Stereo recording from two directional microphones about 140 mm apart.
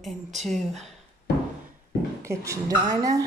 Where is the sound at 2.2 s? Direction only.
25° right (ahead or behind).